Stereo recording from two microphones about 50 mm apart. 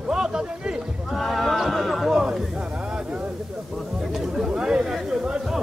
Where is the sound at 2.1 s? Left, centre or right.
Centre.